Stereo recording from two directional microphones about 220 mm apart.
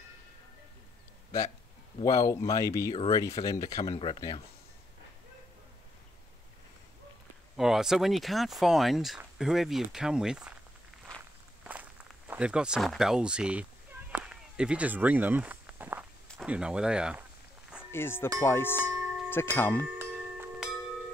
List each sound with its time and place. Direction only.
2.0 s speech: 15° left (ahead or behind)
7.5 s speech: centre (ahead or behind)
11.6 s speech: 5° right (ahead or behind)
14.1 s a sound: 5° right (ahead or behind)
16.3 s speech: 5° right (ahead or behind)
17.9 s speech: 10° left (ahead or behind)
20.0 s music: 10° right (ahead or behind)